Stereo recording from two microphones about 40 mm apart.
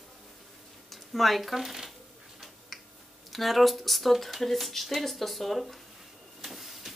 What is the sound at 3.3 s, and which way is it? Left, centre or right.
Speech, centre.